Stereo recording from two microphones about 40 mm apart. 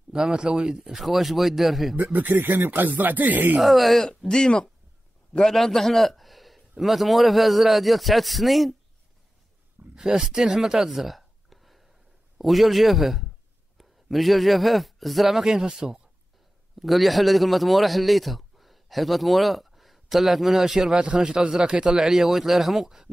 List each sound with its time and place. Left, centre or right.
0.1 s a man's voice: right
0.9 s a man's voice: centre
2.1 s speech: right
3.6 s a man's voice: centre
4.3 s speech: left
5.4 s a man's voice: centre
9.9 s speech: centre
10.3 s a man's voice: centre
10.6 s a sound: centre
12.4 s a man's voice: centre
16.8 s a man's voice: centre
20.9 s a man's voice: right; by 23.0 s centre